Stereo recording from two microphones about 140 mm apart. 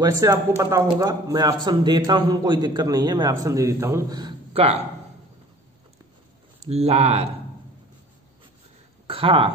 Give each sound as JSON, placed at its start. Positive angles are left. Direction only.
{"t": 0.0, "sound": "a man's voice", "side_deg": -20}
{"t": 6.6, "sound": "speech", "side_deg": -50}
{"t": 9.0, "sound": "a woman's voice", "side_deg": -40}